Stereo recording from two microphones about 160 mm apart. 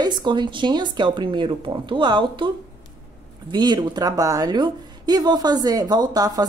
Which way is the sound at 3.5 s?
25° right (ahead or behind).